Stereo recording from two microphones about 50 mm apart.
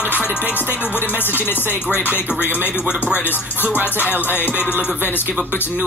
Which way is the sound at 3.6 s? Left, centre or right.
Right.